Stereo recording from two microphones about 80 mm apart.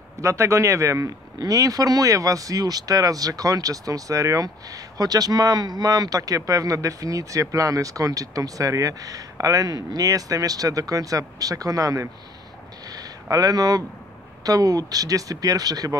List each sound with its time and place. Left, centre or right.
0.2 s a man's voice: right